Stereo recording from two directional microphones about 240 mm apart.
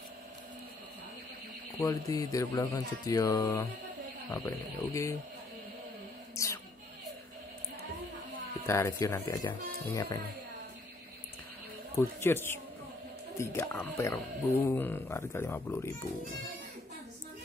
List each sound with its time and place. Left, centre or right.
1.8 s speech: centre
6.3 s a sound: centre
8.6 s speech: centre
12.0 s speech: centre